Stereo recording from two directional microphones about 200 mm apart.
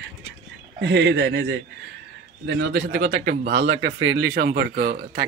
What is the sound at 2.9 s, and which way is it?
Speech, 40° right (ahead or behind).